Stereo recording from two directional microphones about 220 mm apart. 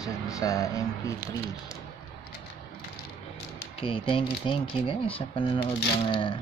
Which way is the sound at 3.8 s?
25° left (ahead or behind).